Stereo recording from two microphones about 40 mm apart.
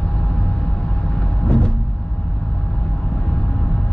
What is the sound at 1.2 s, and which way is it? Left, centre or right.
Vehicle, centre.